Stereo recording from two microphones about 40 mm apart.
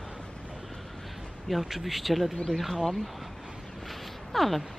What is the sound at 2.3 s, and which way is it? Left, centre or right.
Speech, centre.